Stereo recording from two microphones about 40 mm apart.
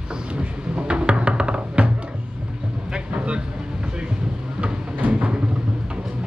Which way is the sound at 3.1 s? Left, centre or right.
Right.